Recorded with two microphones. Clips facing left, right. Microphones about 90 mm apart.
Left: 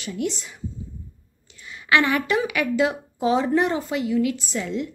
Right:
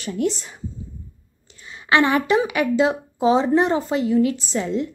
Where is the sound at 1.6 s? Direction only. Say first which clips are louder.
Right 2 dB; 30° right (ahead or behind).